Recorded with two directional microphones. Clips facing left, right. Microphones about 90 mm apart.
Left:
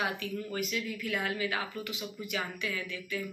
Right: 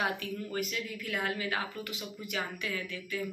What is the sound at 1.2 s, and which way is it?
A woman's voice, 35° right (ahead or behind).